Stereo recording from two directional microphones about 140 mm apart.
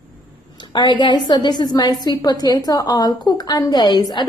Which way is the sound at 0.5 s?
35° left (ahead or behind).